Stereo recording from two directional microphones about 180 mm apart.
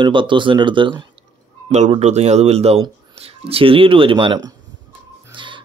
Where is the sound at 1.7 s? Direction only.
40° right (ahead or behind).